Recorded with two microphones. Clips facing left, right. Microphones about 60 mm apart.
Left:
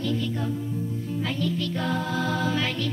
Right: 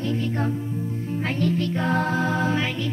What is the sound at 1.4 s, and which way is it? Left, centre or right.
Music, right.